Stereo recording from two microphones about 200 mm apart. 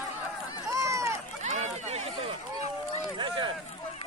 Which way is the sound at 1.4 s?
35° right (ahead or behind).